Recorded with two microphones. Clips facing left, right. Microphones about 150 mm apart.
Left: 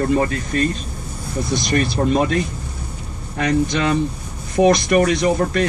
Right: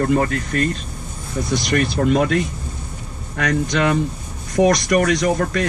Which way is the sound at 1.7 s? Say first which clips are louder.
Even; 30° left (ahead or behind).